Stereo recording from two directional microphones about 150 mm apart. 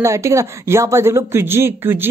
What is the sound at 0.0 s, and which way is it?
Speech, 20° right (ahead or behind).